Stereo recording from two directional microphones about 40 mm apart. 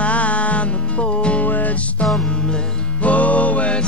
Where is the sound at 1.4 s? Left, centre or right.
Left.